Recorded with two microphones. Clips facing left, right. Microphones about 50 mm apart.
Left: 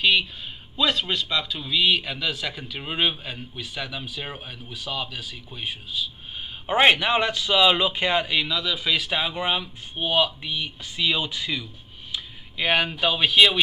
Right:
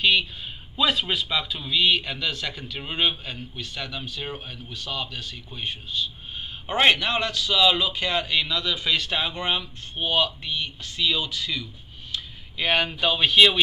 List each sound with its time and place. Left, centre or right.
0.0 s a man's voice: centre
6.6 s a man's voice: centre
8.4 s speech: centre; by 11.6 s left
12.1 s a sound: centre
13.0 s a man's voice: centre